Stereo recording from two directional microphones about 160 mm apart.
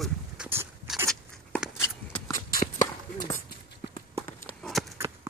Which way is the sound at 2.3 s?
60° left (ahead or behind).